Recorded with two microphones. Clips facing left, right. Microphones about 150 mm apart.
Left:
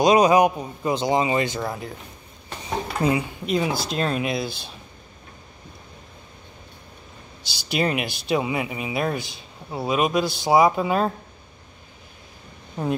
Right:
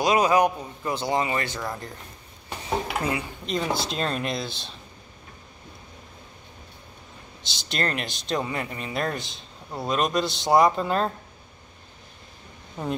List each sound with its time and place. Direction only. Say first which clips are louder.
0.0 s speech: left 4 dB; 20° left (ahead or behind)
3.0 s speech: left 6 dB; 25° left (ahead or behind)
3.4 s speech: left 2 dB; 5° left (ahead or behind)
7.5 s speech: left 5 dB; 5° left (ahead or behind)